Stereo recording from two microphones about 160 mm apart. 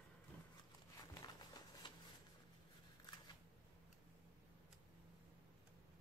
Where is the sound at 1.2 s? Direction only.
25° left (ahead or behind).